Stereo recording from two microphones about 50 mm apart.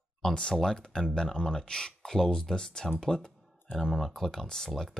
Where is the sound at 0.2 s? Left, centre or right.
Centre.